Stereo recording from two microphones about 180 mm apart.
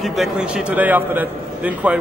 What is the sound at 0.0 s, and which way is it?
A man's voice, centre (ahead or behind).